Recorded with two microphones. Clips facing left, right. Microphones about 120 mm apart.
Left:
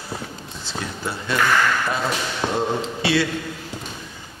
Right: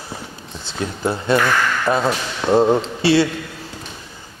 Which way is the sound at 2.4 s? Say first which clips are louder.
Right 9 dB; 5° left (ahead or behind).